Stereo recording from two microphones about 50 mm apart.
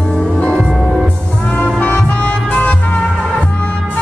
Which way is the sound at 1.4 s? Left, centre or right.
Left.